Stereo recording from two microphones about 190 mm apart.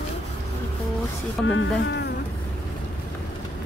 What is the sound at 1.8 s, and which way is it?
Insect, 65° left (ahead or behind).